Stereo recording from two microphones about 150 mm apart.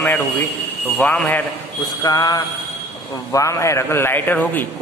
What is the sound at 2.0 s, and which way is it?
Mantra, 25° left (ahead or behind).